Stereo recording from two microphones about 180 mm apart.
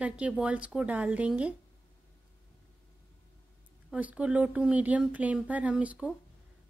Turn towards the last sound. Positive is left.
turn(degrees=-5)  # may be behind; listen again after turning